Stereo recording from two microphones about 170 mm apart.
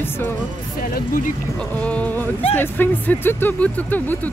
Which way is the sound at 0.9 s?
55° left (ahead or behind).